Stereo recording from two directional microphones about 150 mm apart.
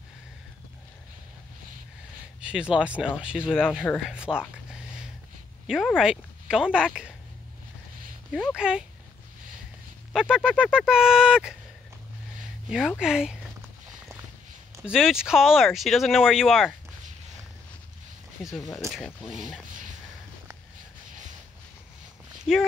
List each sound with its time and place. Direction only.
2.4 s speech: 5° right (ahead or behind)
4.0 s a sound: 5° right (ahead or behind)
5.7 s speech: centre (ahead or behind)
8.3 s speech: 5° right (ahead or behind)
10.1 s speech: 5° right (ahead or behind)
12.6 s speech: 5° right (ahead or behind)
14.8 s speech: 5° right (ahead or behind)
18.4 s speech: centre (ahead or behind)
19.7 s a sound: 60° right (ahead or behind)
22.5 s speech: 5° right (ahead or behind)